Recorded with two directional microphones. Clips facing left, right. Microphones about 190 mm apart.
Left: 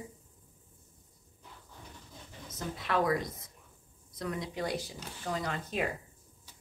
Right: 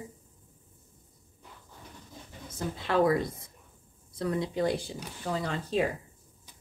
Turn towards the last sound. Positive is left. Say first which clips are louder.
# right 5 dB
turn(degrees=-30)  # may be behind; listen again after turning